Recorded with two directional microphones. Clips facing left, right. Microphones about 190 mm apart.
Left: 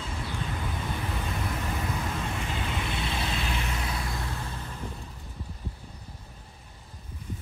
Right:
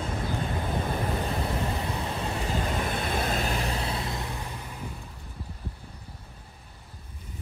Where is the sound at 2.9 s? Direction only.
50° right (ahead or behind); by 4.2 s 30° right (ahead or behind).